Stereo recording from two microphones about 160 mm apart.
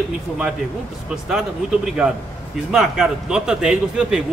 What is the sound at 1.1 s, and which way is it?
A man's voice, 5° right (ahead or behind).